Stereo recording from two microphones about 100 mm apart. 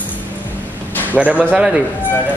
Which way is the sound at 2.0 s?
20° left (ahead or behind).